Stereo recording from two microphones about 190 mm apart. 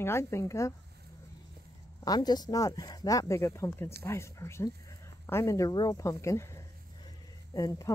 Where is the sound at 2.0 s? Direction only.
20° left (ahead or behind).